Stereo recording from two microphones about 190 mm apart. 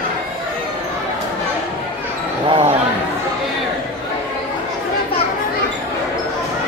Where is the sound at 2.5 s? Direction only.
30° right (ahead or behind).